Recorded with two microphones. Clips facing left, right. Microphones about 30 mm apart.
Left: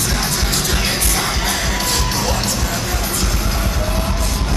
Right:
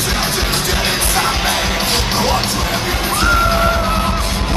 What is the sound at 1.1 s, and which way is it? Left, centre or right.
Music, centre.